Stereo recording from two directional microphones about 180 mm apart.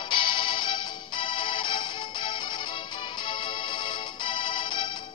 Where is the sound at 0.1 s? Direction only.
25° left (ahead or behind).